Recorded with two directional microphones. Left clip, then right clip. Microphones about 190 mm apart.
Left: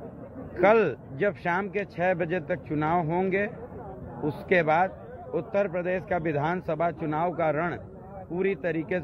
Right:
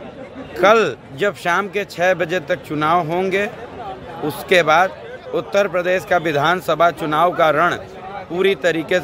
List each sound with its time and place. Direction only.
0.6 s a man's voice: 20° right (ahead or behind)